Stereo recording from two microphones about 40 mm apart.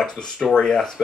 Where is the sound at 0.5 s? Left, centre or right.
Centre.